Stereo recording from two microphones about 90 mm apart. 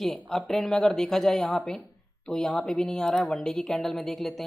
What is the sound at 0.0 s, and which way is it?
A woman's voice, 5° left (ahead or behind).